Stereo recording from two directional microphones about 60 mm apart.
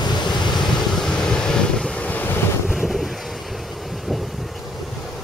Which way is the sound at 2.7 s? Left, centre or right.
Centre.